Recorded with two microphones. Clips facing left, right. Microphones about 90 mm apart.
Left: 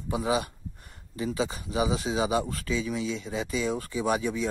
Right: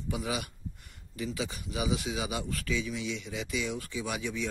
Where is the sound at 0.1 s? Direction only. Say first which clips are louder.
Left 7 dB; 30° left (ahead or behind).